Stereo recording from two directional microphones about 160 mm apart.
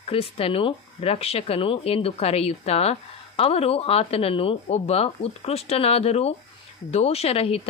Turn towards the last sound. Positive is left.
turn(degrees=40)  # may be behind; listen again after turning